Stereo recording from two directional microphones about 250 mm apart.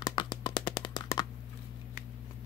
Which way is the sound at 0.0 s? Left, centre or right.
Centre.